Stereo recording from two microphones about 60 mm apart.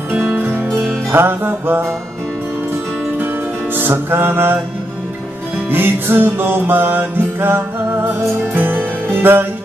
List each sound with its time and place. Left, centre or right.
0.1 s music: right
3.7 s music: right
5.7 s music: right